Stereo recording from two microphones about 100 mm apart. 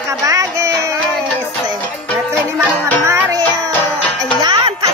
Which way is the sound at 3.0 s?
30° right (ahead or behind).